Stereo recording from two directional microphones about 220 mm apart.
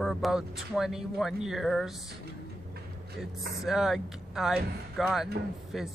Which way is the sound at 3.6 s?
Centre (ahead or behind).